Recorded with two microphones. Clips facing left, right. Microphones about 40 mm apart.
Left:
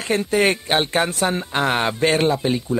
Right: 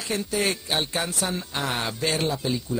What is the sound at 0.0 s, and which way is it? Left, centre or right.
Speech, left.